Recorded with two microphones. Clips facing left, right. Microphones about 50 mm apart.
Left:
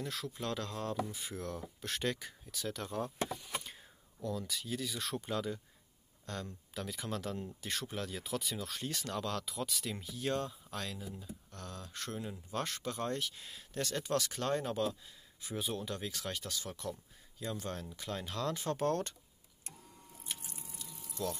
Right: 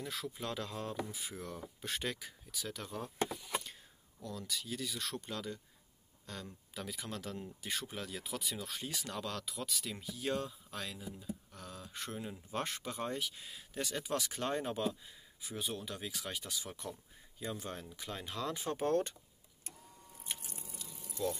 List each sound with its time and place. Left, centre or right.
0.0 s speech: centre
6.2 s speech: centre
15.4 s speech: centre
20.4 s biting: left